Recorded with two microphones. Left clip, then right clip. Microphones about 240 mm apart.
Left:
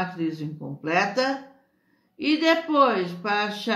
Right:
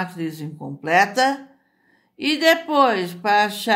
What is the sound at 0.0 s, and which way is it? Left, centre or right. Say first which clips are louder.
Speech: even; right.